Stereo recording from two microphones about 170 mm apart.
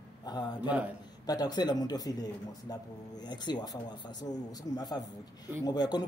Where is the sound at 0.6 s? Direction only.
10° right (ahead or behind).